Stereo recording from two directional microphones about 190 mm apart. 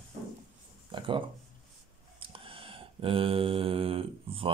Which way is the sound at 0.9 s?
25° right (ahead or behind).